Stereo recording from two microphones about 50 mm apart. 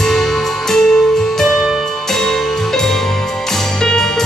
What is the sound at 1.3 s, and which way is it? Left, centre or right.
Music, centre.